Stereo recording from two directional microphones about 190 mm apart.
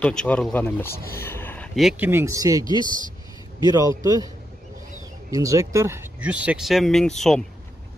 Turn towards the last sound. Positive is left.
turn(degrees=0)  # may be behind; listen again after turning